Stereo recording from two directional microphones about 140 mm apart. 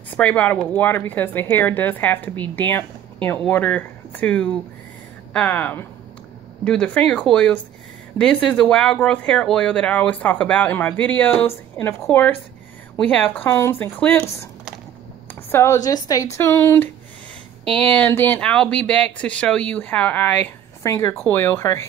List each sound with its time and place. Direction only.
0.2 s speech: 10° left (ahead or behind)
15.5 s speech: 20° left (ahead or behind)